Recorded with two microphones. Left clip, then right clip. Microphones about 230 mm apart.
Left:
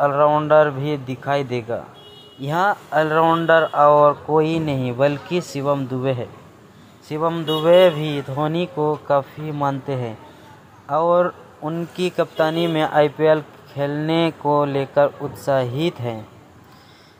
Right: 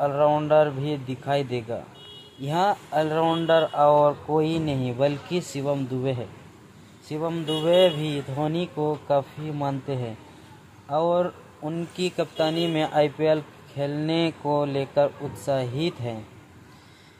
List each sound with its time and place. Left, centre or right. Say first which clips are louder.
0.0 s a man's voice: left 5 dB; centre